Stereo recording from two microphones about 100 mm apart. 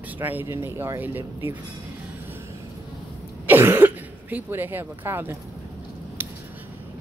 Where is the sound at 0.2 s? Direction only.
20° right (ahead or behind).